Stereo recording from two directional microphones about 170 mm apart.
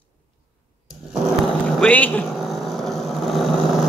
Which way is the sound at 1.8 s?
5° left (ahead or behind).